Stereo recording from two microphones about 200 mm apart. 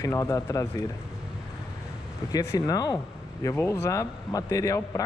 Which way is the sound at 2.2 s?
20° left (ahead or behind).